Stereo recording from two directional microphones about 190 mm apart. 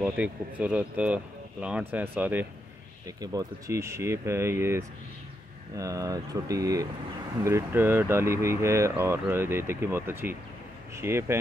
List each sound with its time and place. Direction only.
0.0 s speech: 10° right (ahead or behind)